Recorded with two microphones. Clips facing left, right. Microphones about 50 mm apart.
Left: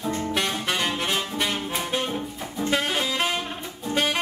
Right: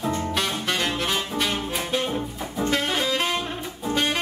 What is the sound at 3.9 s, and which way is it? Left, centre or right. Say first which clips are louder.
Music: even; centre.